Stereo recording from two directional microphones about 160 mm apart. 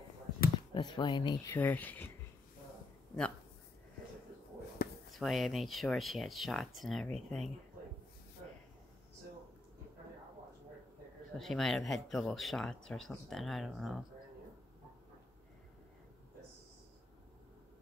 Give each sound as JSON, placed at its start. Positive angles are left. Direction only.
{"t": 0.7, "sound": "speech", "side_deg": 25}
{"t": 1.5, "sound": "speech", "side_deg": 10}
{"t": 4.8, "sound": "a sound", "side_deg": 70}
{"t": 5.1, "sound": "speech", "side_deg": 0}
{"t": 11.3, "sound": "speech", "side_deg": 0}